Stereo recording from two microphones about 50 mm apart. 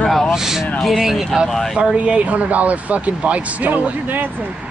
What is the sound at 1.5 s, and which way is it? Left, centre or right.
Speech, centre.